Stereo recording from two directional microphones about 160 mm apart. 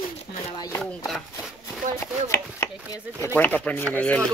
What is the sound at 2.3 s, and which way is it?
Chopping, 20° left (ahead or behind).